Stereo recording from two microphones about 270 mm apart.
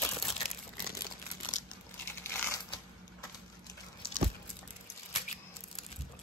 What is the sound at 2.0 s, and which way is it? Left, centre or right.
Crumpling, centre.